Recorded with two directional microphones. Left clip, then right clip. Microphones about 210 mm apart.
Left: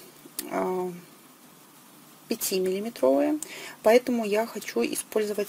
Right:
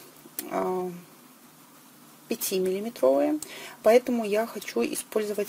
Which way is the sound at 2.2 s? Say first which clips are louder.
Even; 5° left (ahead or behind).